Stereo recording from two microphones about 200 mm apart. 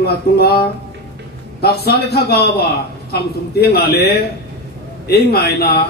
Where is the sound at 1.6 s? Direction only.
50° left (ahead or behind).